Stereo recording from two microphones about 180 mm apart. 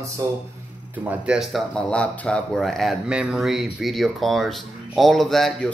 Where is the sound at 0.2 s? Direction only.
20° right (ahead or behind).